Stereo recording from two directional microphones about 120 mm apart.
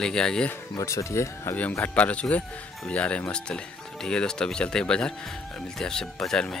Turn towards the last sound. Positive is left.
turn(degrees=5)  # may be behind; listen again after turning